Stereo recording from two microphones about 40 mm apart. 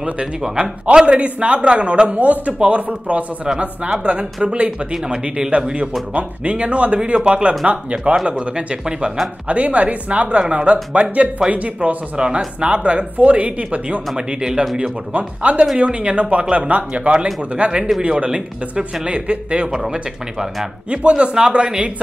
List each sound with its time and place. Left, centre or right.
0.6 s speech: right
5.0 s speech: right
6.1 s speech: right
15.1 s speech: right
19.7 s speech: centre
20.9 s speech: right